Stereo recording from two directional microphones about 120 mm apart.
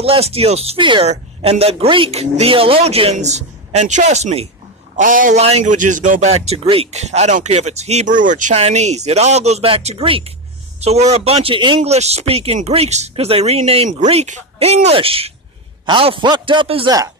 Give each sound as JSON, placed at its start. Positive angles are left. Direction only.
{"t": 0.0, "sound": "speech", "side_deg": -55}
{"t": 0.7, "sound": "a man's voice", "side_deg": -40}
{"t": 1.0, "sound": "speech", "side_deg": -60}
{"t": 4.9, "sound": "a man's voice", "side_deg": -90}
{"t": 10.8, "sound": "speech", "side_deg": -65}
{"t": 11.8, "sound": "a man's voice", "side_deg": -60}